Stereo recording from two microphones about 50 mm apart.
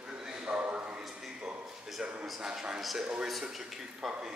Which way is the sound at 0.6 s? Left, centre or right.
Right.